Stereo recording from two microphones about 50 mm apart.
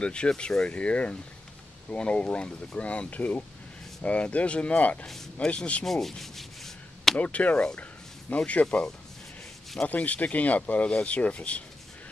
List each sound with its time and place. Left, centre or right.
0.0 s speech: left
5.0 s speech: centre
5.9 s sanding: centre
7.2 s speech: left
8.6 s speech: centre
9.8 s speech: left